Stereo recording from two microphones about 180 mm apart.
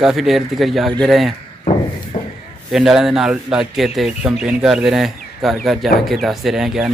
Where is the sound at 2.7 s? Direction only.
Centre (ahead or behind).